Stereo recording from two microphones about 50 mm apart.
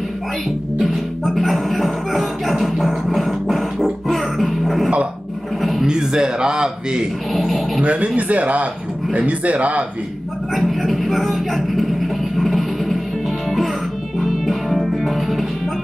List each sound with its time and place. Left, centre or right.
0.7 s music: centre
5.6 s a sound: centre
5.9 s speech: centre
7.3 s speech: centre
7.8 s speech: right
10.5 s vehicle: centre
12.4 s music: centre
14.2 s music: centre